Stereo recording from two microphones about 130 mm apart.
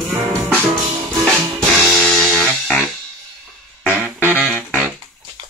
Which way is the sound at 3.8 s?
15° right (ahead or behind).